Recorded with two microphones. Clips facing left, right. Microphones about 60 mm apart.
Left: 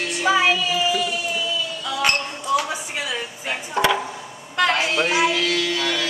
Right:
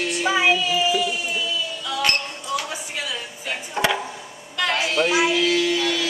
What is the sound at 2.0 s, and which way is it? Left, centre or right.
Music, left.